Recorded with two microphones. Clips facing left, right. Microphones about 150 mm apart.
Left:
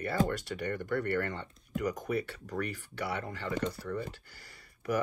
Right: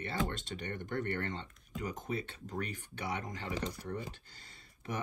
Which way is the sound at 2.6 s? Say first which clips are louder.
Left 4 dB; 20° right (ahead or behind).